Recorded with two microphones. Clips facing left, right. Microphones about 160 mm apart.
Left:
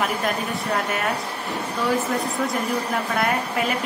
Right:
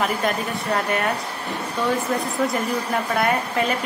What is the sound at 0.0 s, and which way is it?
A woman's voice, centre (ahead or behind).